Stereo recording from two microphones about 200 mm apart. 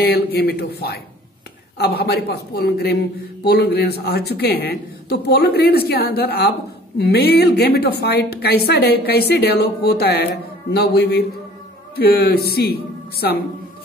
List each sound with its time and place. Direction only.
0.0 s a woman's voice: 50° left (ahead or behind)